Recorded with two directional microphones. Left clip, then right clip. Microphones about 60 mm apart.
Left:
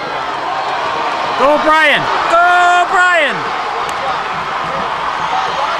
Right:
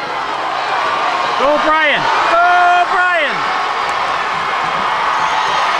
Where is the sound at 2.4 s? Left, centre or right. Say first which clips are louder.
Left 2 dB; left.